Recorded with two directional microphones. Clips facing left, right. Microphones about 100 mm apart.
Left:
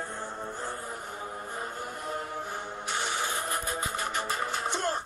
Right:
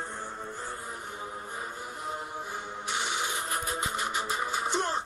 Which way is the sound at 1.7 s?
60° left (ahead or behind).